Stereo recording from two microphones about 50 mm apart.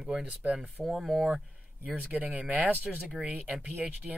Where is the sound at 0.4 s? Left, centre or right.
Right.